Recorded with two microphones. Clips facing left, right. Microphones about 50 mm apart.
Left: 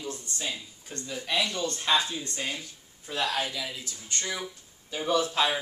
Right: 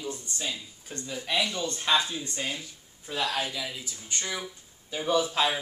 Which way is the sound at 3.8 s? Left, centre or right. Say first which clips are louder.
Even; centre.